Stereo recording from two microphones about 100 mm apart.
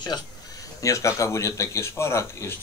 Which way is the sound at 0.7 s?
30° left (ahead or behind).